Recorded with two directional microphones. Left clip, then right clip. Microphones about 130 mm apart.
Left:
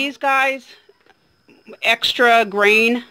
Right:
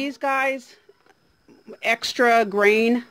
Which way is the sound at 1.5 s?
25° right (ahead or behind).